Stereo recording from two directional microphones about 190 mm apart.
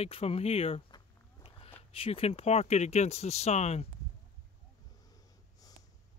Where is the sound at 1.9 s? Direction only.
30° left (ahead or behind).